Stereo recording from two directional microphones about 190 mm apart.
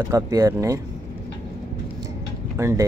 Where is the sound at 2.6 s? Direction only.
15° right (ahead or behind).